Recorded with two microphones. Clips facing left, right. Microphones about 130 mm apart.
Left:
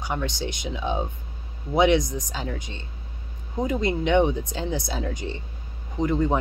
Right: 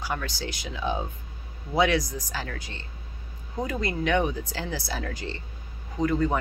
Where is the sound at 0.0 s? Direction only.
20° left (ahead or behind).